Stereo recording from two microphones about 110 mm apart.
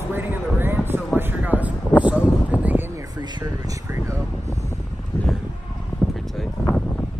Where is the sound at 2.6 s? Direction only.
20° right (ahead or behind).